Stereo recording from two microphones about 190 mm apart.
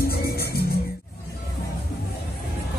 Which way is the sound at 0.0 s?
55° left (ahead or behind).